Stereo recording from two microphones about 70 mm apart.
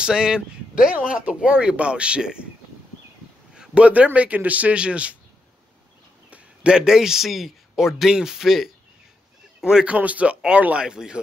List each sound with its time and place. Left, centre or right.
0.0 s speech: centre
3.5 s a man's voice: centre
6.3 s speech: centre
9.9 s speech: centre